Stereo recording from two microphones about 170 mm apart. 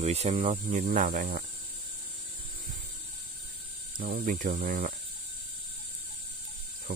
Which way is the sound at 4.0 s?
55° right (ahead or behind).